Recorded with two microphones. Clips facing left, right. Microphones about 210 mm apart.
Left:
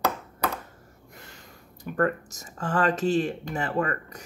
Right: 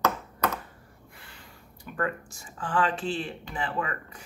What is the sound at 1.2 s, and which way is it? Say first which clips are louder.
Speech: left 4 dB; 45° left (ahead or behind).